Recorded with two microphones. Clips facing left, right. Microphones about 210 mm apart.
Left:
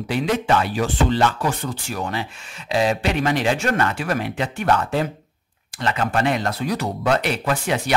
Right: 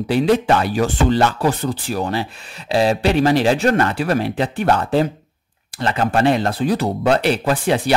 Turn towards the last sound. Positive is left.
turn(degrees=-35)  # may be behind; listen again after turning